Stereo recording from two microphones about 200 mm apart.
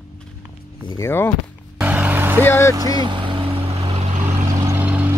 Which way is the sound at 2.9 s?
25° right (ahead or behind).